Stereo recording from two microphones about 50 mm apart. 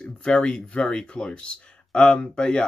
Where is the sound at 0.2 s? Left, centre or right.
Left.